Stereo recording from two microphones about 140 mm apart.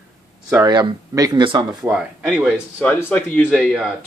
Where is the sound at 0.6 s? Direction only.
30° right (ahead or behind).